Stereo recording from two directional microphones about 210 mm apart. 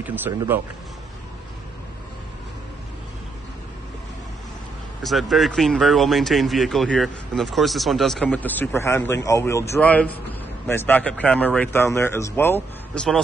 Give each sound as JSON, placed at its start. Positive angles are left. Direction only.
{"t": 0.0, "sound": "speech", "side_deg": -10}
{"t": 5.0, "sound": "speech", "side_deg": 0}